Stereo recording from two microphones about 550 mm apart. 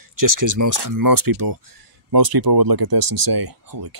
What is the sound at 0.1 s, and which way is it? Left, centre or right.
Speech, right.